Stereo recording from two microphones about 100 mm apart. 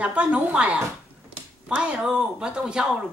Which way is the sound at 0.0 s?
10° right (ahead or behind).